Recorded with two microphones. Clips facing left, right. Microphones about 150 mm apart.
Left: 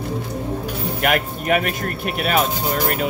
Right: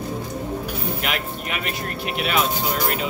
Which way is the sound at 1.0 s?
50° left (ahead or behind).